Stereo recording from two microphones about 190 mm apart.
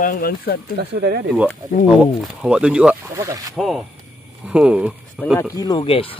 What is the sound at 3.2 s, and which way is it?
Speech, 15° right (ahead or behind).